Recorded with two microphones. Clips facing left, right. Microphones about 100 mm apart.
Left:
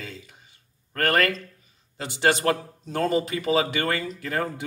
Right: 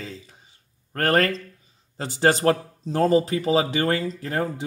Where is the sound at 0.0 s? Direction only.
35° right (ahead or behind).